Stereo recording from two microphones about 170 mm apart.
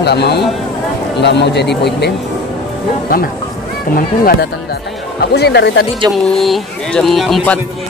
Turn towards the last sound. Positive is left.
turn(degrees=5)  # may be behind; listen again after turning